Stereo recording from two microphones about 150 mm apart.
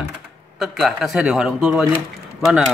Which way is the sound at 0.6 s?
5° right (ahead or behind).